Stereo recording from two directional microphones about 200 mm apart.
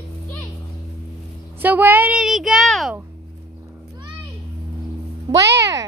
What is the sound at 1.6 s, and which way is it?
A woman's voice, 10° right (ahead or behind).